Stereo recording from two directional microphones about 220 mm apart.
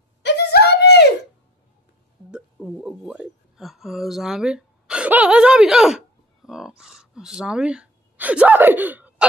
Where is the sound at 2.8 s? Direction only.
5° right (ahead or behind).